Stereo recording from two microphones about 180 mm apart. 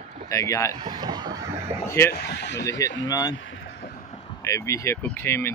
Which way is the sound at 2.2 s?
70° left (ahead or behind).